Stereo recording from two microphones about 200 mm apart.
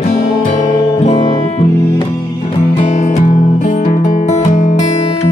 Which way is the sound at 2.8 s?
35° left (ahead or behind).